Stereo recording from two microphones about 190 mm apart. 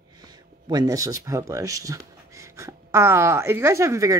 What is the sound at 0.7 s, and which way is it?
Speech, 20° right (ahead or behind).